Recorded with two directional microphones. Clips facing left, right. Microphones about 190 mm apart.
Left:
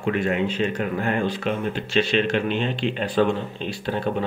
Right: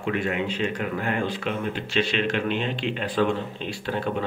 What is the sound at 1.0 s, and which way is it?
Speech, 40° left (ahead or behind).